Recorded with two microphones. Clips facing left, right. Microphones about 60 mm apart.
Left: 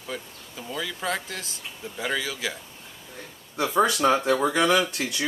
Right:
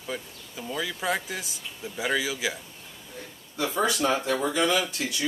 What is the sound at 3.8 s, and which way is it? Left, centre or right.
Speech, left.